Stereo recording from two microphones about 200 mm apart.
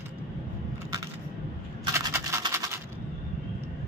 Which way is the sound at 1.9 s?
15° right (ahead or behind).